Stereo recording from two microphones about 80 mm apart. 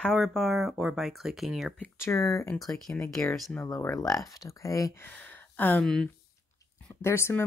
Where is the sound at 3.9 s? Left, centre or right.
Left.